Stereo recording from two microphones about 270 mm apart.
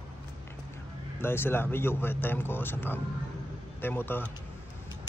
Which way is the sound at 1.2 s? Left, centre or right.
Centre.